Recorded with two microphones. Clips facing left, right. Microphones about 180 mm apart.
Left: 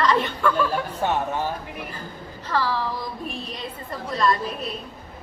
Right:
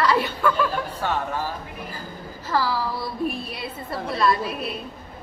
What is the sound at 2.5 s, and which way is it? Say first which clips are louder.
A woman's voice: right 1 dB; 10° right (ahead or behind).